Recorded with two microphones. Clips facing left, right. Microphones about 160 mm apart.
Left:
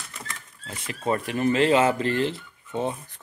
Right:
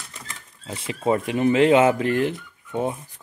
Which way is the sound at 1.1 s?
20° right (ahead or behind).